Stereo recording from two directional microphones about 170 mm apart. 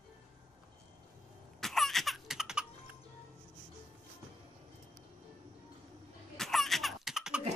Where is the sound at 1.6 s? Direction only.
Centre (ahead or behind).